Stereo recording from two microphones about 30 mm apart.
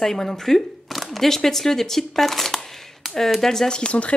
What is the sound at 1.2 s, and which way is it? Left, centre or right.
Speech, centre.